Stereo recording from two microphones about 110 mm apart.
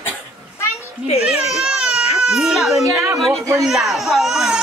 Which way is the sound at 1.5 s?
5° right (ahead or behind).